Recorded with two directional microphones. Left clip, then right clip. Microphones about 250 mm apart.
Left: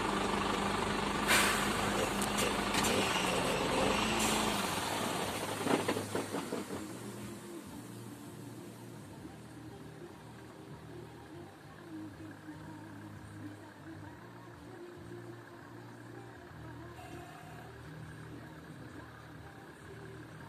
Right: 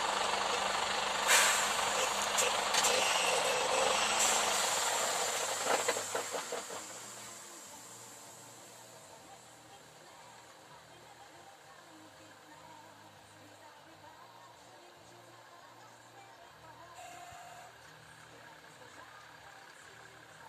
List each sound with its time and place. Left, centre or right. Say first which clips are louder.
0.0 s vehicle: right 1 dB; right